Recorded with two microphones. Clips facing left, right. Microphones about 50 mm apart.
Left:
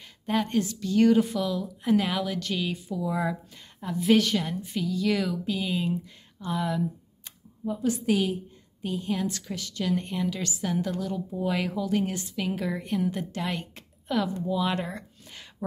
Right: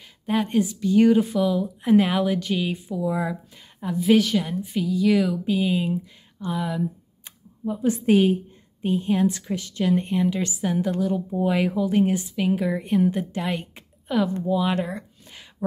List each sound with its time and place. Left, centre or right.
0.0 s a sound: centre
0.5 s speech: centre
1.9 s a woman's voice: right
3.0 s a woman's voice: centre
7.2 s a sound: centre
7.8 s a woman's voice: right; by 12.8 s centre
12.8 s a woman's voice: right; by 15.5 s centre